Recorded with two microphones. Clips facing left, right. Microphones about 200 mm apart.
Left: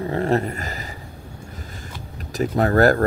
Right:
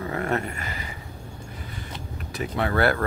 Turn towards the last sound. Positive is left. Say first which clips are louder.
# left 7 dB
turn(degrees=40)  # may be behind; listen again after turning